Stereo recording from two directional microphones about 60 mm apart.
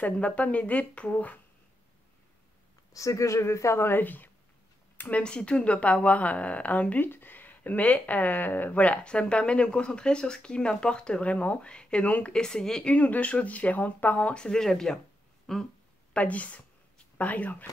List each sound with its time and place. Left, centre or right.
0.0 s speech: left
2.9 s a woman's voice: left
5.1 s speech: centre
12.4 s speech: centre
12.9 s speech: left; by 15.6 s centre
16.1 s speech: left